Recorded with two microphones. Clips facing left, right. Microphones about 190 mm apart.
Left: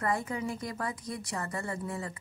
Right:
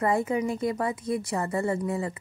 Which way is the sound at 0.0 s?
25° right (ahead or behind).